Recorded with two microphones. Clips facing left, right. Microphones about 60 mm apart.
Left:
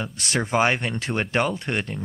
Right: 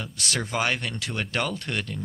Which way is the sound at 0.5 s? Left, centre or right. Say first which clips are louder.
Left 7 dB; left.